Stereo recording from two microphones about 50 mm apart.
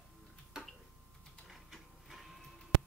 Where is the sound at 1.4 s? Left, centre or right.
Centre.